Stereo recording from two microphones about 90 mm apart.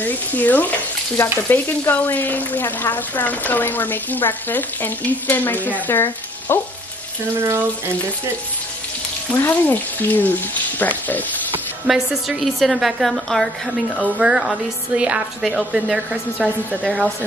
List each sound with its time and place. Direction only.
0.0 s frying: 20° left (ahead or behind)
9.3 s frying: 20° left (ahead or behind)
11.9 s a woman's voice: 5° right (ahead or behind)
14.0 s speech: 10° right (ahead or behind)